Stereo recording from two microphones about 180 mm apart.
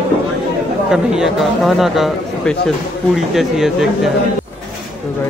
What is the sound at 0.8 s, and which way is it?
Speech, 5° right (ahead or behind).